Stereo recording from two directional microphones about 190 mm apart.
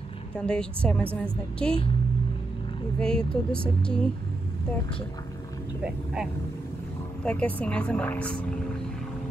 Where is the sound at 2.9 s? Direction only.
5° left (ahead or behind).